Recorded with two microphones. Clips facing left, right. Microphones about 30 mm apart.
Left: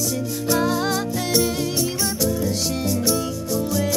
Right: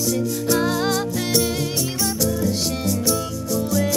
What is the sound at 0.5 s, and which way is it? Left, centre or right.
Music, centre.